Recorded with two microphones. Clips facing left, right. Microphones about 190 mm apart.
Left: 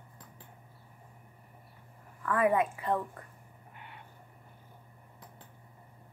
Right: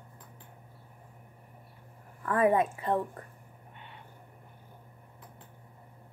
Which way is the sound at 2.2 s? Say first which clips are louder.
Right 2 dB; 30° right (ahead or behind).